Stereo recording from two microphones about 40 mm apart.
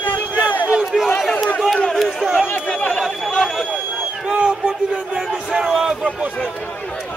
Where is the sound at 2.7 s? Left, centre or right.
Left.